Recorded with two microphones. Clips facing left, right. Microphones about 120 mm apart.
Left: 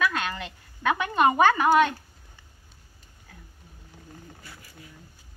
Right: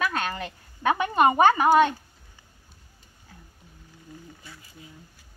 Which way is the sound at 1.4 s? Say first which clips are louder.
Right 2 dB; 25° right (ahead or behind).